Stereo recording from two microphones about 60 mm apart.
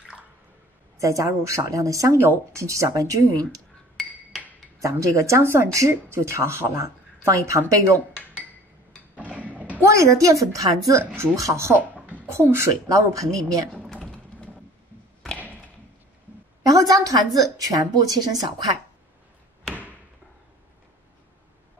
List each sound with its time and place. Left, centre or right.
0.9 s speech: right
2.2 s a woman's voice: right
2.6 s speech: right
4.7 s speech: right
9.3 s a sound: right
9.8 s a woman's voice: right
12.8 s speech: right
15.3 s thump: right
16.7 s a woman's voice: right